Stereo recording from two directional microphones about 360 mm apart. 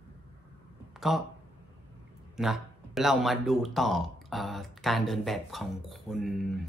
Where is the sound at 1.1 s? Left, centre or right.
Centre.